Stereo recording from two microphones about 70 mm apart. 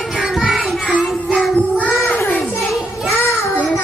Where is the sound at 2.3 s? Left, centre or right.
Left.